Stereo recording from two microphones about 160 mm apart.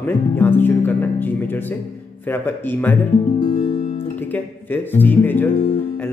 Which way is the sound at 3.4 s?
30° left (ahead or behind).